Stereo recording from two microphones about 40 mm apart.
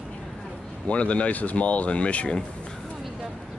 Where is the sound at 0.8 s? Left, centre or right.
Left.